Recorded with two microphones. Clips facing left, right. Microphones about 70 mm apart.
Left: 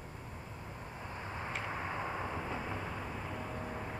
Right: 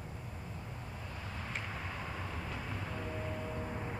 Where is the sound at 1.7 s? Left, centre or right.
Left.